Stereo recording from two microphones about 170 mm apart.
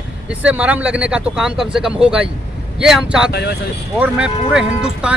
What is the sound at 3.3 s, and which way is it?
Speech, 75° left (ahead or behind).